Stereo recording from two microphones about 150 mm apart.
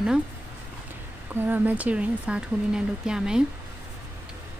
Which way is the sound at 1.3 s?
15° right (ahead or behind).